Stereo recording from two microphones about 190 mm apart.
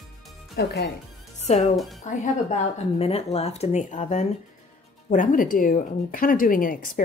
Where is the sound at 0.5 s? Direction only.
65° left (ahead or behind).